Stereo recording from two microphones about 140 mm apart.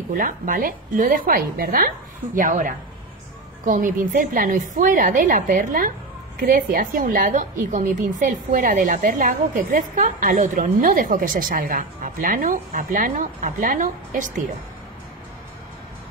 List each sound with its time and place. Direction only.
0.1 s a woman's voice: 75° right (ahead or behind); by 1.9 s 90° right
2.3 s a woman's voice: 70° right (ahead or behind)